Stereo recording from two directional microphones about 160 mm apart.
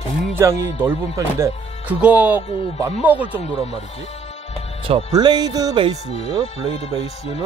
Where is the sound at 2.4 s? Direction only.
40° left (ahead or behind).